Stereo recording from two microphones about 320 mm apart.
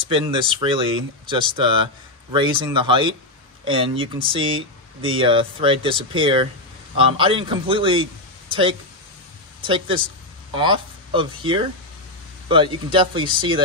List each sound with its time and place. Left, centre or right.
0.1 s speech: centre
12.9 s speech: centre